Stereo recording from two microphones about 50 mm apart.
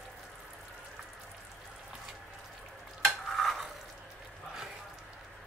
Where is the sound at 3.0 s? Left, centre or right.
Centre.